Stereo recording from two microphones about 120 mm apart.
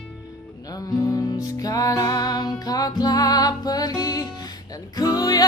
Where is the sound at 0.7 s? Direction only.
30° left (ahead or behind).